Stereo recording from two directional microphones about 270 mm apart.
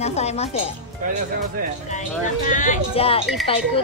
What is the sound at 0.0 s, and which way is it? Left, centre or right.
Speech, left.